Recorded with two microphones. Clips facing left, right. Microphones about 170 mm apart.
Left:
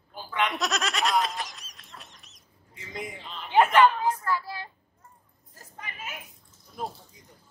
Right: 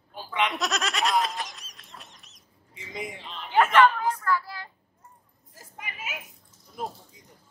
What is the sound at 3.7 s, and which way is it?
Speech, 25° left (ahead or behind).